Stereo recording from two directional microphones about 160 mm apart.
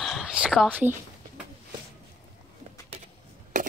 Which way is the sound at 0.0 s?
5° right (ahead or behind).